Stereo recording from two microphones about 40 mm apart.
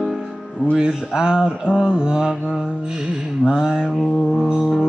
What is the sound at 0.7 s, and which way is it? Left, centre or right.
Mantra, centre.